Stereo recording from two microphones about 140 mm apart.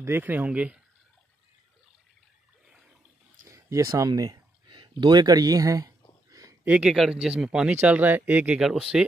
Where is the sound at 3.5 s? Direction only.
25° right (ahead or behind).